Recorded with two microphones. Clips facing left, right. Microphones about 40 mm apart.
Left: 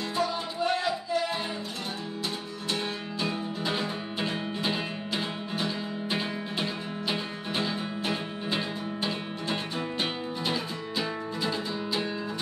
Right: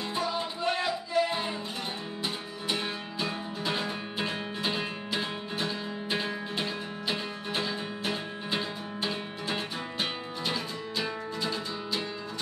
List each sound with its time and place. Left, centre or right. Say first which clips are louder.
0.1 s music: left 2 dB; centre
3.2 s music: left 3 dB; centre